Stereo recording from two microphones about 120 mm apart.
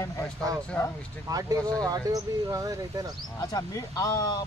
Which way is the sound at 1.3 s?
30° right (ahead or behind).